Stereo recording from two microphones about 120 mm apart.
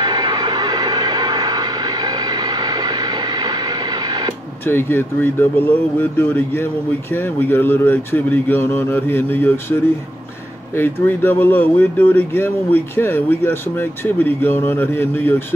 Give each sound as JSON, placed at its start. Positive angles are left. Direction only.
{"t": 0.0, "sound": "music", "side_deg": -40}
{"t": 4.6, "sound": "speech", "side_deg": 20}